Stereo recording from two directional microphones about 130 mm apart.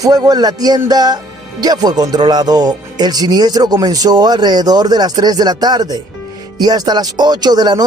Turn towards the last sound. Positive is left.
turn(degrees=-30)  # may be behind; listen again after turning